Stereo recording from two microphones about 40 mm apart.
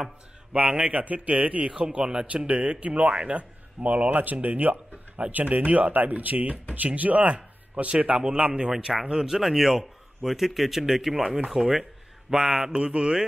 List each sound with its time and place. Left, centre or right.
0.7 s mantra: right
0.9 s speech: right
1.7 s mantra: right
2.2 s speech: right
8.2 s mantra: right
8.6 s speech: centre
12.7 s mantra: right